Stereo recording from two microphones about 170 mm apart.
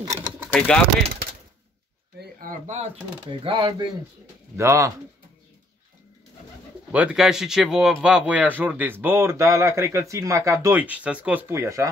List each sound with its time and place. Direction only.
0.4 s speech: 5° left (ahead or behind)
2.1 s a sound: 50° right (ahead or behind)
3.3 s speech: 30° right (ahead or behind)
4.6 s speech: 15° right (ahead or behind)
6.9 s speech: 5° right (ahead or behind)